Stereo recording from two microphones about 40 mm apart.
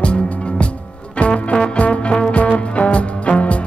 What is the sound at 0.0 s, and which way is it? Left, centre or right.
Music, left.